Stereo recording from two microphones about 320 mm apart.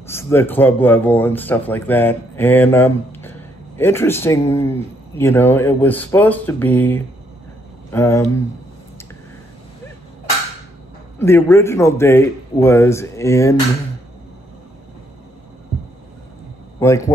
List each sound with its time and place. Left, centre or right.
0.0 s speech: centre
11.1 s speech: centre
16.8 s speech: centre